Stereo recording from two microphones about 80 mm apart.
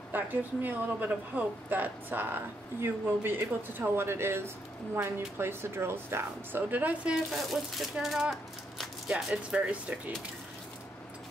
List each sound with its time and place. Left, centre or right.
0.1 s speech: right
7.2 s speech: centre